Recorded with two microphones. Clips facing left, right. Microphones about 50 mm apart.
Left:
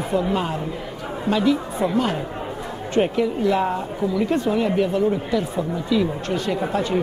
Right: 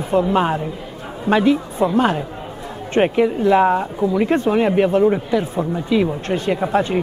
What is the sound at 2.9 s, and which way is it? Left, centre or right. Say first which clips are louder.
Speech: right 4 dB; right.